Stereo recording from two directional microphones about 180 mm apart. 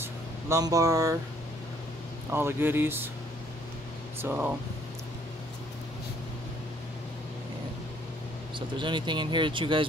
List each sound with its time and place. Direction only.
0.0 s vehicle: 15° right (ahead or behind)
2.3 s speech: 10° right (ahead or behind)
4.2 s speech: 10° right (ahead or behind)
8.5 s speech: 25° right (ahead or behind)